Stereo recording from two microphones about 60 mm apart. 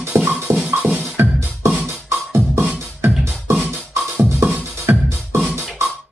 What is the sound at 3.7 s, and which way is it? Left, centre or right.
Music, right.